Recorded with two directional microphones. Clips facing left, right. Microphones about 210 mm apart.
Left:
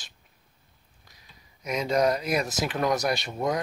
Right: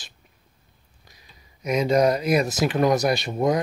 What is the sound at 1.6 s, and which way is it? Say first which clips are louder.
Speech: right 5 dB; 5° right (ahead or behind).